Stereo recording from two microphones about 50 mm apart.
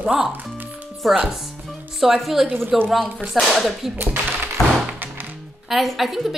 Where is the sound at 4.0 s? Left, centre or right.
Right.